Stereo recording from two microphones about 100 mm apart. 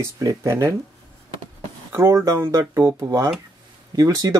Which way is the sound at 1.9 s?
30° right (ahead or behind).